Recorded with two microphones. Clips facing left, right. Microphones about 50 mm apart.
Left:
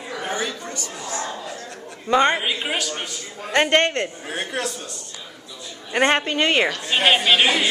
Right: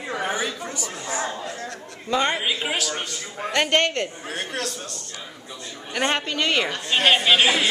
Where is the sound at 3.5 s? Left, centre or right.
Left.